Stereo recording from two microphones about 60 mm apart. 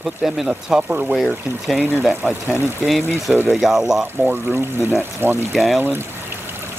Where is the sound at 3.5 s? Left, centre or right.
Centre.